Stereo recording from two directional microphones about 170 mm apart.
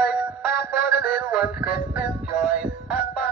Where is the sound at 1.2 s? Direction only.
5° right (ahead or behind).